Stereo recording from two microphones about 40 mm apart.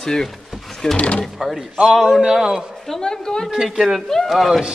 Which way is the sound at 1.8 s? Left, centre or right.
Centre.